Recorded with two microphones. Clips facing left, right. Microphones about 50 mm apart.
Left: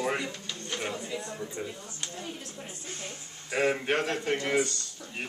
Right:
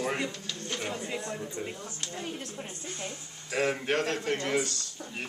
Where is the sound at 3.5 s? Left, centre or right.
Centre.